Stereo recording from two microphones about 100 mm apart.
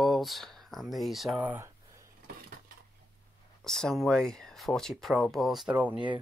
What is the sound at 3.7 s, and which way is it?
Speech, 5° left (ahead or behind).